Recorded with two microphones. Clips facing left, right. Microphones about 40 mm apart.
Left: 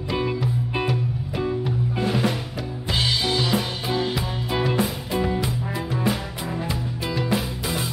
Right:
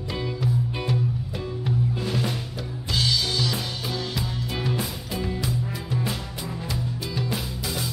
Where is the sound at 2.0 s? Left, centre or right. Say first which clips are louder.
Left 5 dB; left.